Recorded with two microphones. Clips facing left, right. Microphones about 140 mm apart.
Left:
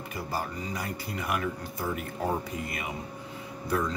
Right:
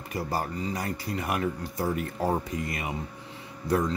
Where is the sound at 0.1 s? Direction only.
40° right (ahead or behind).